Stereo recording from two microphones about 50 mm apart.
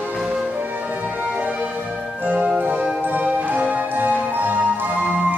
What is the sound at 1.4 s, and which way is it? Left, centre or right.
Music, right.